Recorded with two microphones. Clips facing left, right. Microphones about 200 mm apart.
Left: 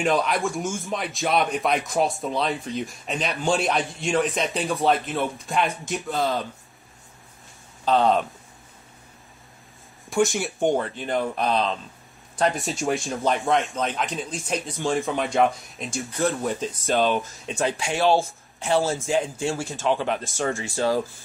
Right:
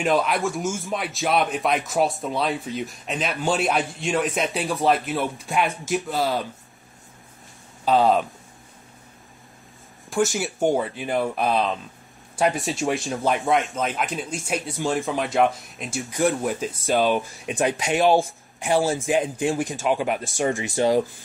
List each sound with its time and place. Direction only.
0.0 s speech: 5° right (ahead or behind)
7.8 s speech: 5° right (ahead or behind)
10.0 s speech: centre (ahead or behind); by 21.0 s 20° right (ahead or behind)